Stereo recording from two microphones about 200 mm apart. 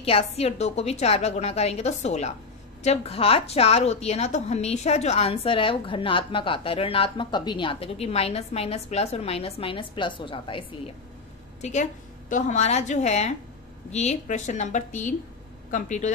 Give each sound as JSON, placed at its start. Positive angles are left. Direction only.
{"t": 0.0, "sound": "a woman's voice", "side_deg": 30}
{"t": 11.6, "sound": "a woman's voice", "side_deg": 35}